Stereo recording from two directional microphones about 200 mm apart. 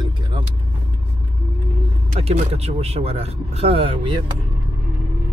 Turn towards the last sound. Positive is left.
turn(degrees=-30)  # may be behind; listen again after turning